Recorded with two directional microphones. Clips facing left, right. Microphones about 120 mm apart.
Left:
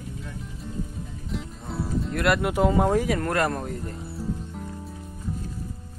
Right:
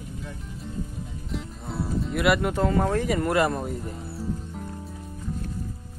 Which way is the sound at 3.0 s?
5° right (ahead or behind).